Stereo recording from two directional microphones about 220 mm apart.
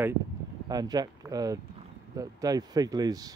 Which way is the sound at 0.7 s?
15° right (ahead or behind).